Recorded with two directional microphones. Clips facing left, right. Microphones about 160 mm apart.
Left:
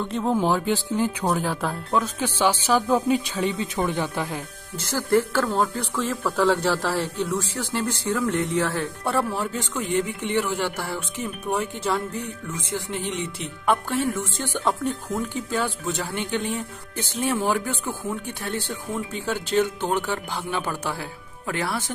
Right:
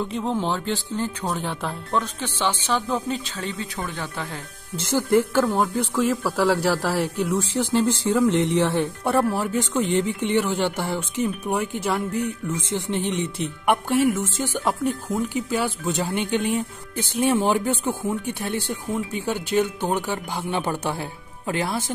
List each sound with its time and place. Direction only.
0.0 s speech: centre (ahead or behind)
4.7 s speech: 20° right (ahead or behind)
13.7 s speech: 10° right (ahead or behind)